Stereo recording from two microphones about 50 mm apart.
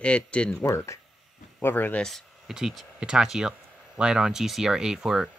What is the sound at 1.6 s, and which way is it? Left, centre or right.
Speech, left.